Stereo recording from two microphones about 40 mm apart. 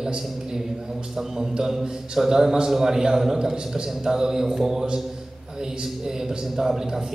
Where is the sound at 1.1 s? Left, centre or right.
Centre.